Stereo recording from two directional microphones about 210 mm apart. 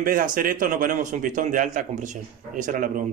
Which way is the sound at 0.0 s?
40° right (ahead or behind).